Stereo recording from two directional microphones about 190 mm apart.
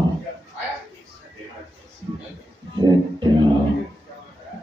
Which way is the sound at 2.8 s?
25° right (ahead or behind).